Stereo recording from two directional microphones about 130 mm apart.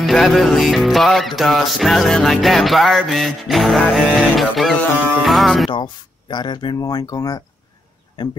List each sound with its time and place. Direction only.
0.0 s music: centre (ahead or behind)
5.7 s speech: 35° left (ahead or behind)